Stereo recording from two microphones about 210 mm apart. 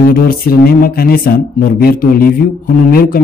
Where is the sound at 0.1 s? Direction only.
45° left (ahead or behind).